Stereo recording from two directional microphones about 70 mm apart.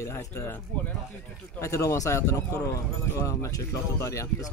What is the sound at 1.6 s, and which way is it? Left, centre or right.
Speech, left.